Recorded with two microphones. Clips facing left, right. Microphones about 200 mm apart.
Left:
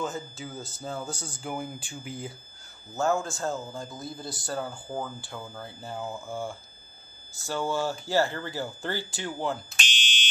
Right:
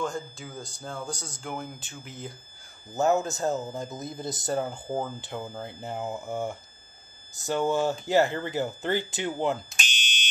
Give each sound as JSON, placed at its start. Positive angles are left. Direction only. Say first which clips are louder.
{"t": 0.0, "sound": "speech", "louder": "right 1 dB", "side_deg": 5}
{"t": 2.9, "sound": "speech", "louder": "right 3 dB", "side_deg": -20}